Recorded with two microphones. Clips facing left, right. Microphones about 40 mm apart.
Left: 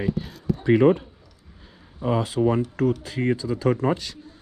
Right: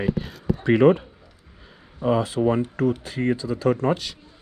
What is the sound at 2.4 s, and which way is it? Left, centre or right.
Speech, right.